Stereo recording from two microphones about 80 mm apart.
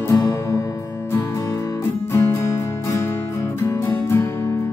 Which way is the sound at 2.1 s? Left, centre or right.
Left.